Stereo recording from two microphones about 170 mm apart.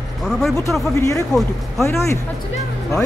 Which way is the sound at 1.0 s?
20° left (ahead or behind).